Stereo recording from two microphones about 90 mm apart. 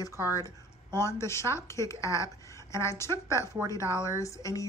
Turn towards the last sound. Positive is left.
turn(degrees=35)  # may be behind; listen again after turning